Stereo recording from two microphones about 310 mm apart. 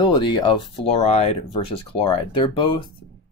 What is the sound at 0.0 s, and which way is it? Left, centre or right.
Speech, centre.